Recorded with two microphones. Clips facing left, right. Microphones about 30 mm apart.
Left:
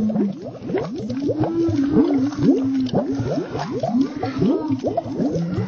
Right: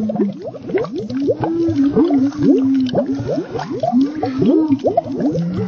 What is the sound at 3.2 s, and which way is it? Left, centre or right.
Liquid, centre.